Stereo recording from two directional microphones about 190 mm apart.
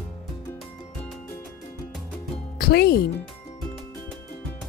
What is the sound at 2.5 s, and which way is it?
Music, 55° left (ahead or behind).